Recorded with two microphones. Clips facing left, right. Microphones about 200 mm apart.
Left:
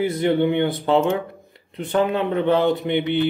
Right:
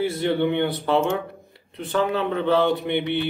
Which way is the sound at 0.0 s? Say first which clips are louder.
Left 3 dB; 20° left (ahead or behind).